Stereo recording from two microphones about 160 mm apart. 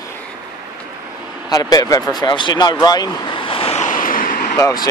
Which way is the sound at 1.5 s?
25° left (ahead or behind).